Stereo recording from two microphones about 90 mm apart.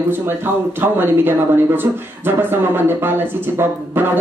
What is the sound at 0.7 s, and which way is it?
Speech, 25° right (ahead or behind).